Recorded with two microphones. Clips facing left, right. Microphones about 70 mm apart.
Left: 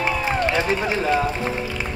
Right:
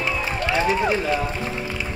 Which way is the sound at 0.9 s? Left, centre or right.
Left.